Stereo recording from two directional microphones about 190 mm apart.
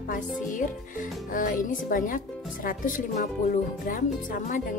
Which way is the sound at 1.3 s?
45° left (ahead or behind).